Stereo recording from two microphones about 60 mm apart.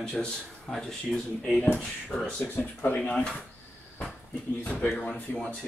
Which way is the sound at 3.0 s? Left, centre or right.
Centre.